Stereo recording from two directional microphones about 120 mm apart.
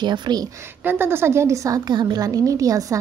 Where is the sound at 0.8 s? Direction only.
20° right (ahead or behind).